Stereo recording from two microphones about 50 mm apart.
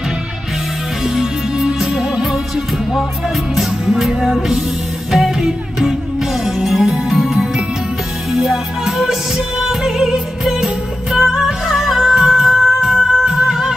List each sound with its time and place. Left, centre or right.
1.0 s music: centre